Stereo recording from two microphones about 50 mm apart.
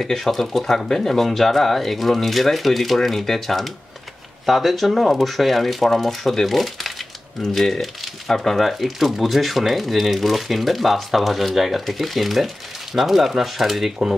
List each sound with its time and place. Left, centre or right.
0.0 s speech: centre